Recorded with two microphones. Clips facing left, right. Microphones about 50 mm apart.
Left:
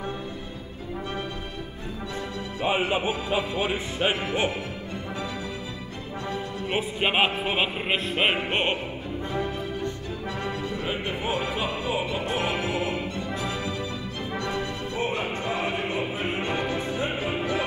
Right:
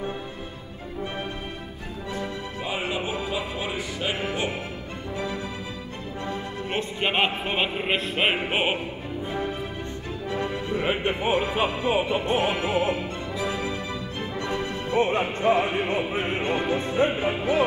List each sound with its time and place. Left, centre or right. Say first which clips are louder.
2.1 s speech: right 2 dB; left
6.7 s music: left 1 dB; centre
10.3 s speech: right 5 dB; right
13.5 s music: right 1 dB; right